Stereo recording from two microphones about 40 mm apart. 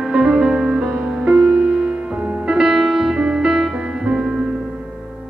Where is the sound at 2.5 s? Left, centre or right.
Centre.